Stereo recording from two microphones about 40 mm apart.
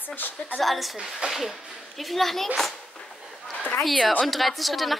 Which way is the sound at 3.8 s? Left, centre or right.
Centre.